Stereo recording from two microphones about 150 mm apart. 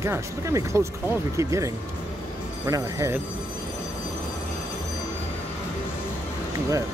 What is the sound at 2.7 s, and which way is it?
Speech, 20° right (ahead or behind).